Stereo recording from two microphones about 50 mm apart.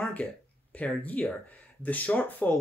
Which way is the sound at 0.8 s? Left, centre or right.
Left.